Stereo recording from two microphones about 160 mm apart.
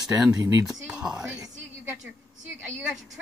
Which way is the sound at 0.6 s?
Centre (ahead or behind).